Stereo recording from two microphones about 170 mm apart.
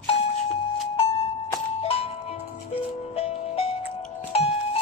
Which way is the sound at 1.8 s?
35° left (ahead or behind).